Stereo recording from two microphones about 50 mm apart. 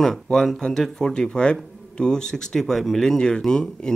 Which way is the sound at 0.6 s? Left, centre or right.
Centre.